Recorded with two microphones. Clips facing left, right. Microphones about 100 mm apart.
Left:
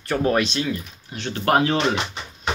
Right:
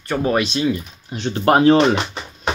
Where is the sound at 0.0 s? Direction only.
5° right (ahead or behind); by 1.9 s 35° right (ahead or behind).